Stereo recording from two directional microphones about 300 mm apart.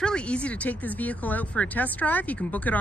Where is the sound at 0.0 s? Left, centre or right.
Centre.